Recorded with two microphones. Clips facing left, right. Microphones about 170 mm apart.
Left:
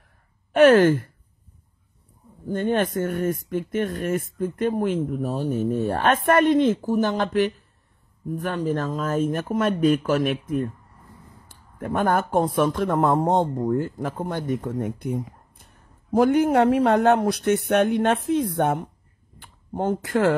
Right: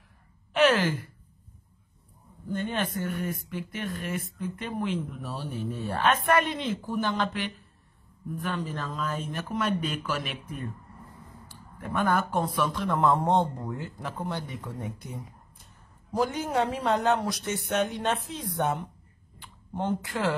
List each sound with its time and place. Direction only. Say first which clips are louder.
0.5 s speech: left 9 dB; 50° left (ahead or behind)
2.4 s speech: left 8 dB; 50° left (ahead or behind)
11.4 s speech: left 8 dB; 50° left (ahead or behind)
19.4 s speech: left 6 dB; 45° left (ahead or behind)